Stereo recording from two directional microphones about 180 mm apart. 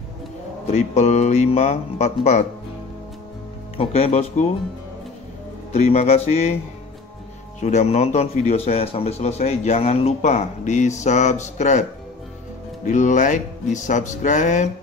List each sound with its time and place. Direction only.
0.7 s speech: 40° left (ahead or behind)
3.7 s speech: 35° left (ahead or behind)
5.7 s speech: 40° left (ahead or behind)
7.6 s speech: 40° left (ahead or behind)
12.8 s speech: 45° left (ahead or behind)